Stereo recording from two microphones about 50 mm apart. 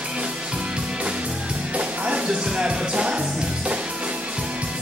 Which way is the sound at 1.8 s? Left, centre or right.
Right.